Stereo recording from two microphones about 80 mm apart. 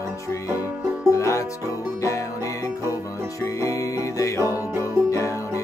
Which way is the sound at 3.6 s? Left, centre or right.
Left.